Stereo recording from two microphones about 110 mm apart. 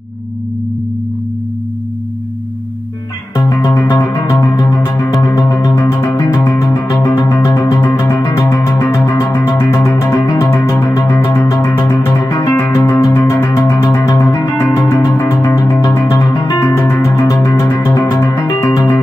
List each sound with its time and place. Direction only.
3.7 s music: 20° left (ahead or behind)